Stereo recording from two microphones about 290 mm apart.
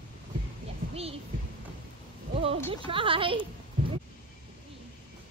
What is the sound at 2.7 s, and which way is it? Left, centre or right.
Speech, centre.